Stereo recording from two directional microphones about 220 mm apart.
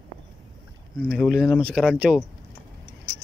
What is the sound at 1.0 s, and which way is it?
Speech, centre (ahead or behind).